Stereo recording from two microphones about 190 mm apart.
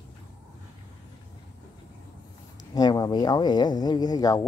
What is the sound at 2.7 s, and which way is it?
Speech, 20° left (ahead or behind).